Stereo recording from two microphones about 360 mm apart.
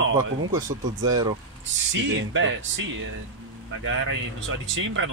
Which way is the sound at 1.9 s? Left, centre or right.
Right.